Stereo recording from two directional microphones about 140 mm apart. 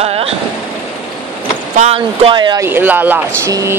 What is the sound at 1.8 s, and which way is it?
Speech, 45° right (ahead or behind).